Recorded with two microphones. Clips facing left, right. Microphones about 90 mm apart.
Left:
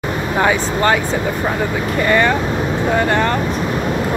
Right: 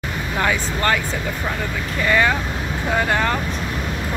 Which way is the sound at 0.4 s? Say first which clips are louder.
Left 5 dB; 25° left (ahead or behind).